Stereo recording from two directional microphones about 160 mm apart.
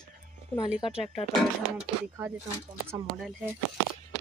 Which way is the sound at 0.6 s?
30° left (ahead or behind).